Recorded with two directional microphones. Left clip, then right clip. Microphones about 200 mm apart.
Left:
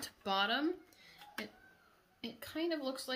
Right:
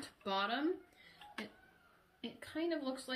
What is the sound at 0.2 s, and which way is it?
Speech, 50° left (ahead or behind).